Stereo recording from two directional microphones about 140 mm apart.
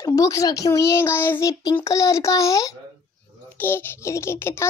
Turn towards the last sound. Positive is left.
turn(degrees=15)  # may be behind; listen again after turning